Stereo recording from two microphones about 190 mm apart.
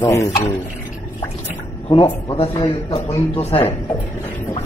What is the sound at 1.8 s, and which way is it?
Speech, 30° left (ahead or behind).